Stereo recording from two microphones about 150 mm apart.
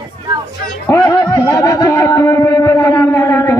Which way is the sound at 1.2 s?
25° left (ahead or behind).